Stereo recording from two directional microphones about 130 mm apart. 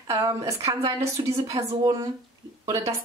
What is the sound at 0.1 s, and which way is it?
Speech, 25° right (ahead or behind).